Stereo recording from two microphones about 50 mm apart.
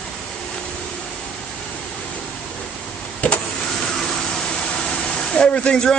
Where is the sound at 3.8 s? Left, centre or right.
Centre.